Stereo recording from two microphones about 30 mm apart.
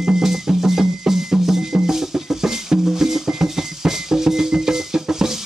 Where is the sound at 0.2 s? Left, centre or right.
Centre.